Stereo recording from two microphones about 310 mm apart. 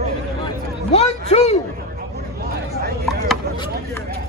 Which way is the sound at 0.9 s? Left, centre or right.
Left.